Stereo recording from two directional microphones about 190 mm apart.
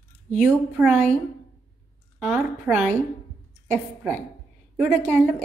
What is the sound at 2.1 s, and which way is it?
Speech, 5° right (ahead or behind).